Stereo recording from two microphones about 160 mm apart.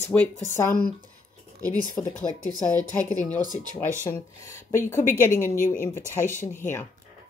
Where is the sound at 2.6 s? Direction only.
55° left (ahead or behind).